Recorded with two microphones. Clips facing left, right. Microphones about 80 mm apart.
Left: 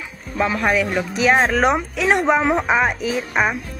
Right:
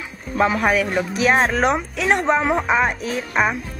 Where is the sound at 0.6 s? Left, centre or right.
Centre.